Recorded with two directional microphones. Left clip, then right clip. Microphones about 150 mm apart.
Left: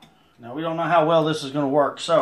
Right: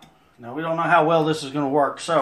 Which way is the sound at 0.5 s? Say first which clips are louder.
Right 1 dB; 15° left (ahead or behind).